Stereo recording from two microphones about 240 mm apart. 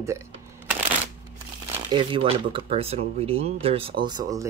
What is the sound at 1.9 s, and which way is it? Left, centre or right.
Speech, right.